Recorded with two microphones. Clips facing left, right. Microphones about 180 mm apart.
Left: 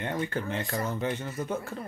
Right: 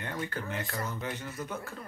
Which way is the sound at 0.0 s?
25° left (ahead or behind).